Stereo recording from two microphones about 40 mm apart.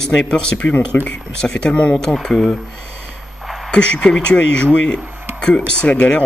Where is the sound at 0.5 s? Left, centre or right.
Left.